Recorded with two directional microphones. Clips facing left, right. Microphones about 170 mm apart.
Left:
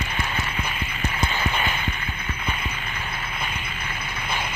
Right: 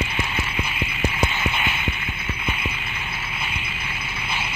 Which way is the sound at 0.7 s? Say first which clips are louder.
Right 4 dB; 40° left (ahead or behind).